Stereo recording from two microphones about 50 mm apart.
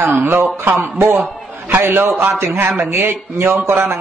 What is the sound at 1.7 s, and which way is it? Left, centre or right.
A man's voice, right.